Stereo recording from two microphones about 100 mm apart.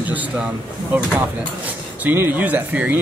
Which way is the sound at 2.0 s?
20° right (ahead or behind).